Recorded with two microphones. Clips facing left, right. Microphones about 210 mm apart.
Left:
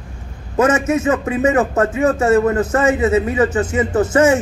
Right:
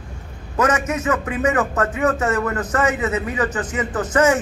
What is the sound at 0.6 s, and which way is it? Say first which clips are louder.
A man's voice: left 5 dB; 25° left (ahead or behind).